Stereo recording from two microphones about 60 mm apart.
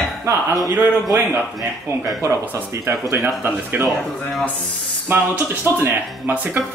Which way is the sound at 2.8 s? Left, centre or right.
Right.